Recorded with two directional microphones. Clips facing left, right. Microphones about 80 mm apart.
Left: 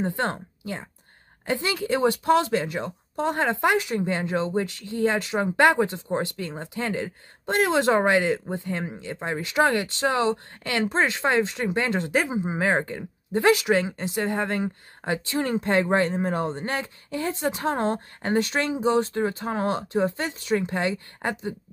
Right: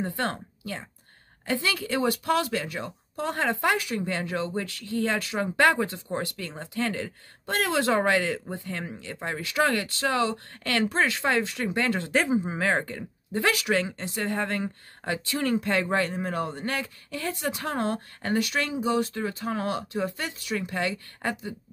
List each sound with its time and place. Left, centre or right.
0.0 s speech: left